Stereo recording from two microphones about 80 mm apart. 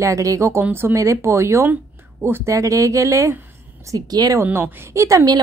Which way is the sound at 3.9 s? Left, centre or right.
Right.